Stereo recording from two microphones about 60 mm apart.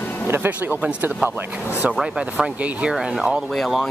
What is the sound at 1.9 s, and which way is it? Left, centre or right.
Speech, centre.